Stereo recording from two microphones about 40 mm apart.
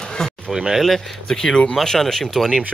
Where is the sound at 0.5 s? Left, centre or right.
Centre.